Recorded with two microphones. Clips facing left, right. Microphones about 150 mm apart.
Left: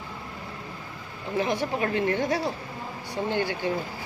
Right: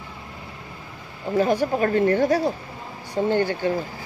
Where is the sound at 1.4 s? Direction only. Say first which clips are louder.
Right 6 dB; 45° right (ahead or behind).